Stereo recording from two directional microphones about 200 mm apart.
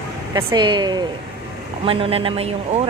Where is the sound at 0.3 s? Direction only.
20° right (ahead or behind).